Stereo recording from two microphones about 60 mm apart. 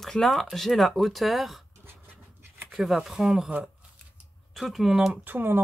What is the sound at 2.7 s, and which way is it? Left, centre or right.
Speech, centre.